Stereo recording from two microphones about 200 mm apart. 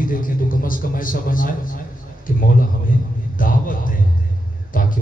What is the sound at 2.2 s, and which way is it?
Speech, 45° left (ahead or behind).